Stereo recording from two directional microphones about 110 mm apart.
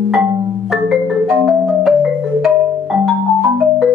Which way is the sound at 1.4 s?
Centre (ahead or behind).